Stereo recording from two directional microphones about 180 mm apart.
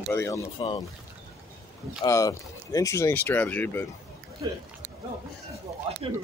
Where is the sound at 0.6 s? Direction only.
30° left (ahead or behind).